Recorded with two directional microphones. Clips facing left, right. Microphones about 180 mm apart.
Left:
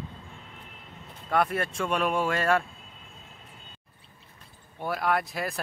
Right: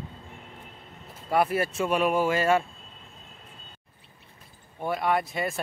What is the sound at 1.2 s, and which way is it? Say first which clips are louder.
A man's voice: right 2 dB; 5° right (ahead or behind).